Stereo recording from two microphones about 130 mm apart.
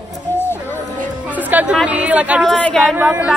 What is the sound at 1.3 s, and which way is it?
Speech, 10° right (ahead or behind).